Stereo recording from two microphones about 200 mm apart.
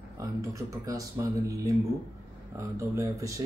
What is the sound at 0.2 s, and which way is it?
Speech, 15° right (ahead or behind).